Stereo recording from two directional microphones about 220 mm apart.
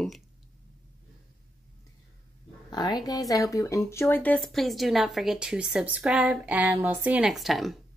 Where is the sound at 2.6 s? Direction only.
20° left (ahead or behind); by 7.7 s centre (ahead or behind).